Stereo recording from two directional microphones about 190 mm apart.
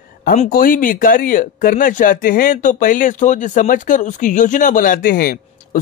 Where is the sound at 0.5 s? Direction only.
50° left (ahead or behind).